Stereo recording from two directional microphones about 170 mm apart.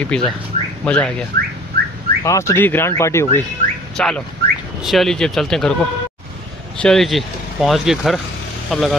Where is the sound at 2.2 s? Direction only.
15° left (ahead or behind).